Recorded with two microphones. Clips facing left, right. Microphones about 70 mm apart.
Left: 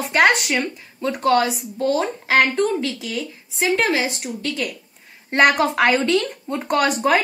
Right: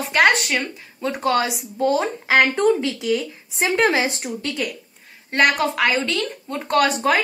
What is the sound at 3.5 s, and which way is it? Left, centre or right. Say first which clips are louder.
Speech: right 1 dB; right.